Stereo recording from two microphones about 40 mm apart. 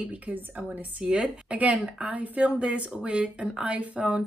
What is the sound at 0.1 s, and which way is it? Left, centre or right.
Speech, right.